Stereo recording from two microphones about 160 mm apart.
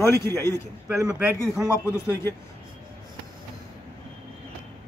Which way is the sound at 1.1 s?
5° right (ahead or behind).